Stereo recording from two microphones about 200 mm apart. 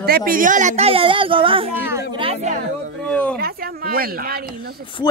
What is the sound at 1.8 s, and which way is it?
Speech, 15° right (ahead or behind).